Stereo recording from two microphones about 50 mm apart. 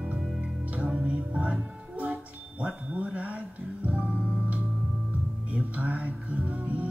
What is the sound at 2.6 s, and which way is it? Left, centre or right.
Music, right.